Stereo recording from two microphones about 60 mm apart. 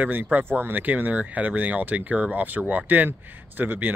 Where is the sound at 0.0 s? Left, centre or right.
Right.